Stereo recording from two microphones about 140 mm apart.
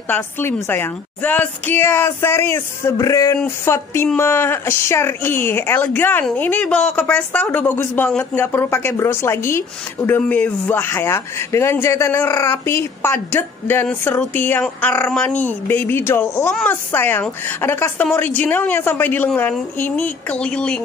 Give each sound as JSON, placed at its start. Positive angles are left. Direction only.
{"t": 0.1, "sound": "speech", "side_deg": 15}